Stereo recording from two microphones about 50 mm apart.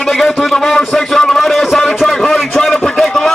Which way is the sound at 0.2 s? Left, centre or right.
Centre.